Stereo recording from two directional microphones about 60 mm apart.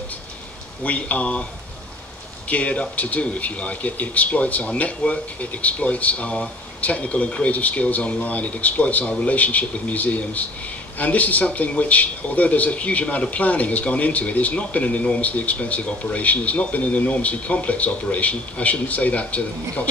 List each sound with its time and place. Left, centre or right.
0.8 s a man's voice: left
2.4 s a man's voice: left